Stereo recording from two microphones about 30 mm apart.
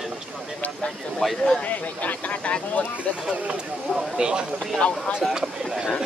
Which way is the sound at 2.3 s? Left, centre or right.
Left.